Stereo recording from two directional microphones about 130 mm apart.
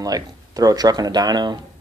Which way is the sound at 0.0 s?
30° right (ahead or behind).